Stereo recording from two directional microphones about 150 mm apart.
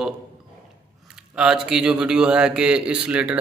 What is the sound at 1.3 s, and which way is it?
A man's voice, 5° right (ahead or behind).